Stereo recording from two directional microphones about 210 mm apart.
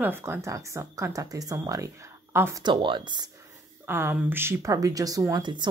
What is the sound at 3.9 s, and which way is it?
Speech, 10° right (ahead or behind).